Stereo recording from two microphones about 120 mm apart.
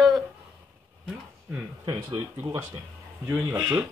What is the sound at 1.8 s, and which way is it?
Speech, 35° right (ahead or behind).